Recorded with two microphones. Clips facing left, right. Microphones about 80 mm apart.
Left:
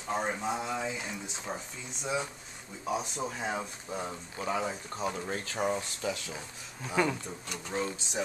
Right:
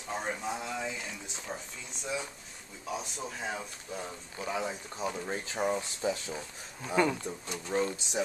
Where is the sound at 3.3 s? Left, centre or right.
Centre.